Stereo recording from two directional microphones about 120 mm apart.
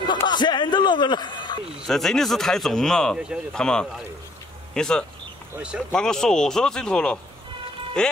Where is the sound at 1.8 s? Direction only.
5° left (ahead or behind).